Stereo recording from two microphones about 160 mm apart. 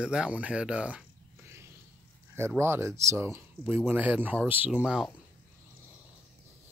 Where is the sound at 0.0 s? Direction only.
5° right (ahead or behind).